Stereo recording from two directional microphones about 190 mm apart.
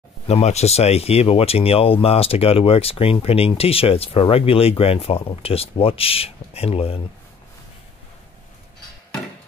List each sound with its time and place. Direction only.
0.3 s speech: 35° left (ahead or behind)